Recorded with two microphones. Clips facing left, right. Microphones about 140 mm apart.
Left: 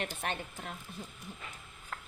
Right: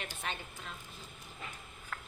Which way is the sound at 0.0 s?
55° left (ahead or behind).